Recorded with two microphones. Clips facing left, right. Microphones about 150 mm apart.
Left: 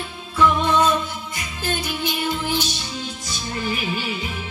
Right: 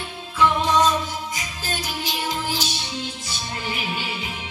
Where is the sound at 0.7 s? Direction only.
55° left (ahead or behind).